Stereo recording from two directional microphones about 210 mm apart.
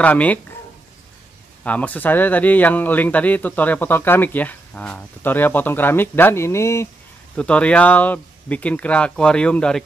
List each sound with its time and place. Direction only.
0.0 s speech: 5° left (ahead or behind)
1.6 s speech: 5° left (ahead or behind)